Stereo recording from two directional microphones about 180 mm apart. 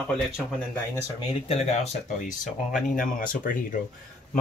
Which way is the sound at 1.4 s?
35° left (ahead or behind).